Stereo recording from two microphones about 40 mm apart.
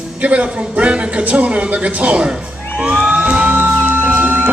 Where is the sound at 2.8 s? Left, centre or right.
Right.